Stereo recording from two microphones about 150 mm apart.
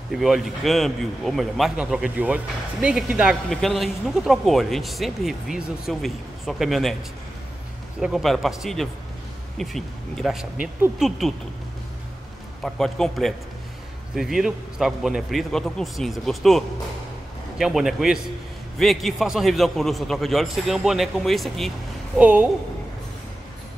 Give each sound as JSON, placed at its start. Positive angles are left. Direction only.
{"t": 0.1, "sound": "a man's voice", "side_deg": 0}
{"t": 8.0, "sound": "a man's voice", "side_deg": 0}
{"t": 12.6, "sound": "a man's voice", "side_deg": 5}